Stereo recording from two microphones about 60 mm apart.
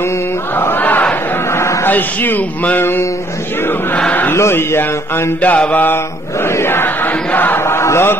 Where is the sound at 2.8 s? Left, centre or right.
Left.